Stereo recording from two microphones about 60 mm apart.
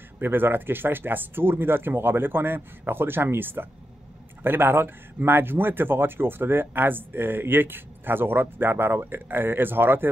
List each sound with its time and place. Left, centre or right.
0.2 s speech: right